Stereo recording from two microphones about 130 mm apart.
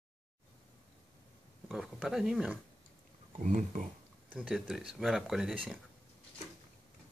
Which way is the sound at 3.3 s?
75° right (ahead or behind).